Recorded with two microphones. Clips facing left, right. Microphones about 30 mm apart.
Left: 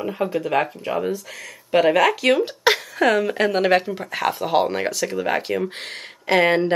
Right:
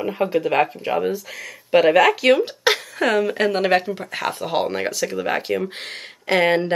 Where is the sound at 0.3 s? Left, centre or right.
Right.